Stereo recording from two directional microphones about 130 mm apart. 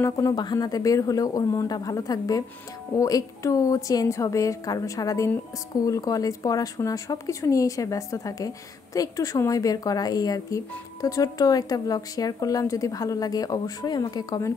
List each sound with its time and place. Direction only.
0.0 s speech: 30° left (ahead or behind)